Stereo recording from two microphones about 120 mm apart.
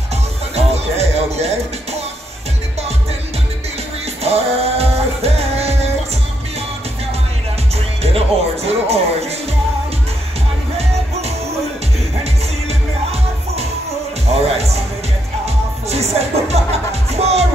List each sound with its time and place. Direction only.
0.1 s music: 65° right (ahead or behind)
4.2 s music: 60° right (ahead or behind)
7.7 s music: 60° right (ahead or behind)
8.6 s speech: 60° right (ahead or behind)
10.8 s music: 60° right (ahead or behind)